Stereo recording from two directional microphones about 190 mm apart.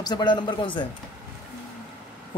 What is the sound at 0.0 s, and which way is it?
Speech, 20° left (ahead or behind).